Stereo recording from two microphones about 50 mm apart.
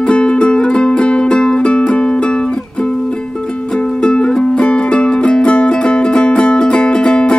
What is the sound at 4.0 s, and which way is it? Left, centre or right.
Music, centre.